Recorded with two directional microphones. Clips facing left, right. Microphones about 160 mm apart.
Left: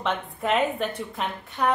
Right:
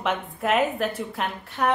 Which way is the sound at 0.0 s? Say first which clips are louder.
Right 1 dB; 5° right (ahead or behind).